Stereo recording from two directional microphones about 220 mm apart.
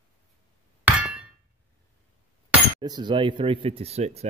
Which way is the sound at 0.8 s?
5° right (ahead or behind).